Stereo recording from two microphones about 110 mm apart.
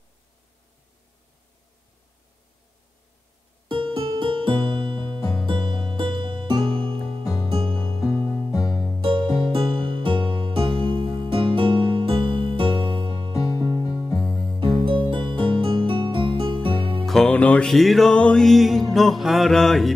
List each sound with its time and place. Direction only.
3.6 s music: 50° right (ahead or behind)
6.7 s music: 10° left (ahead or behind)
7.9 s music: 30° left (ahead or behind)
8.5 s music: 35° left (ahead or behind)
9.0 s music: 45° right (ahead or behind)
13.3 s music: 30° left (ahead or behind)
14.9 s music: 50° right (ahead or behind)
17.0 s music: 5° left (ahead or behind)